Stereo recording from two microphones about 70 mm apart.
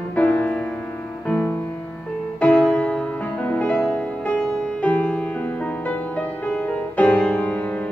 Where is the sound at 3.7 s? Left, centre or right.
Centre.